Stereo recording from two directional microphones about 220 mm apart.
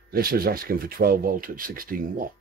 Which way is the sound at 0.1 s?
40° right (ahead or behind).